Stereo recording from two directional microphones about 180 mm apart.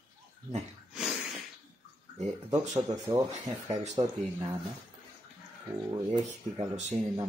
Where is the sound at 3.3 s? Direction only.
40° right (ahead or behind).